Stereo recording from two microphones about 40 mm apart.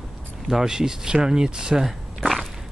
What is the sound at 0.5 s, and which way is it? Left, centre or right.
Speech, centre.